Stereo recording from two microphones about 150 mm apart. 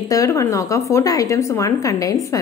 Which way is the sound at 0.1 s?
20° left (ahead or behind).